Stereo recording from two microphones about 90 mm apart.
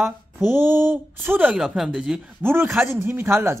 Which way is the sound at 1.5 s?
5° right (ahead or behind).